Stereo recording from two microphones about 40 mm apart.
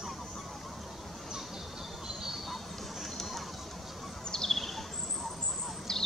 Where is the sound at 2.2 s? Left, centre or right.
Centre.